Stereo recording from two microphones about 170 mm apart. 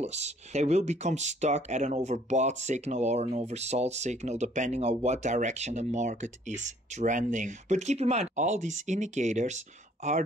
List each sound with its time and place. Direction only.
0.0 s speech: 40° right (ahead or behind)